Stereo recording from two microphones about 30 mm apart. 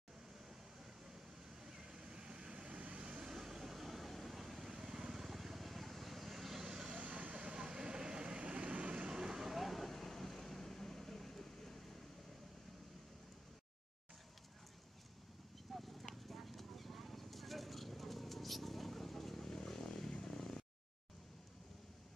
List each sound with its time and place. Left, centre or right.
1.6 s vehicle: centre; by 3.0 s right
3.0 s vehicle: right
3.3 s vehicle: centre
7.0 s vehicle: right
7.3 s vehicle: right; by 11.8 s centre
15.7 s clip-clop: centre
19.6 s vehicle: centre